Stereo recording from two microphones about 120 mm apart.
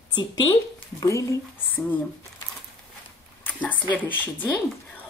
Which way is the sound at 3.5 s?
15° left (ahead or behind).